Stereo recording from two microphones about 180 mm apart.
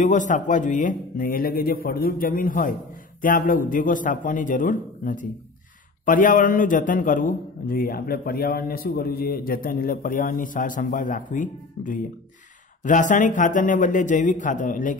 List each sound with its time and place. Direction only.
0.0 s a man's voice: 45° left (ahead or behind)